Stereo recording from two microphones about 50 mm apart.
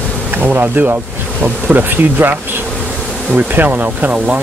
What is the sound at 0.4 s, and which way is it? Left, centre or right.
Speech, right.